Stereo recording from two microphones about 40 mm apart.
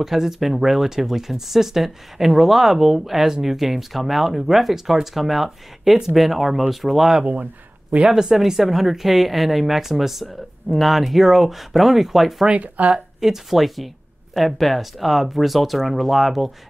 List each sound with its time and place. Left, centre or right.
0.0 s speech: centre
12.4 s speech: right
13.2 s speech: centre